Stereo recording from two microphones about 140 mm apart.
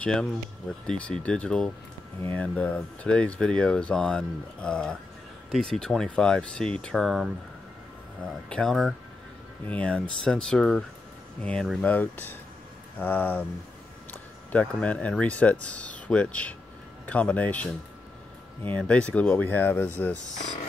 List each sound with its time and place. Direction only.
0.0 s speech: 5° left (ahead or behind)
8.5 s speech: 5° left (ahead or behind)
14.5 s speech: 10° left (ahead or behind)
18.8 s speech: 10° left (ahead or behind)